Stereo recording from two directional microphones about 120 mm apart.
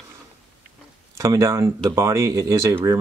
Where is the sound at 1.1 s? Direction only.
25° right (ahead or behind).